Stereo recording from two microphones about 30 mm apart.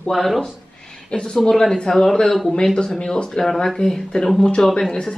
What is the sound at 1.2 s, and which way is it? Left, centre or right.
Speech, left.